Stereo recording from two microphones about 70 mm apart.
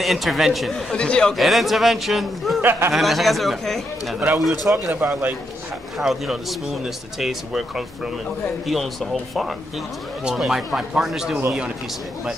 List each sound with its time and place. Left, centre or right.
0.0 s speech: centre
0.9 s speech: centre
1.3 s speech: centre
2.6 s speech: right
2.9 s speech: centre
4.6 s speech: right
5.9 s speech: centre